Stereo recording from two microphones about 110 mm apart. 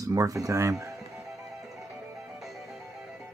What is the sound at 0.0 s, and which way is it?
Speech, 30° right (ahead or behind).